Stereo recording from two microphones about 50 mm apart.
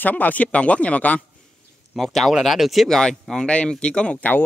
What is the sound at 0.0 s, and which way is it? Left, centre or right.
Speech, left.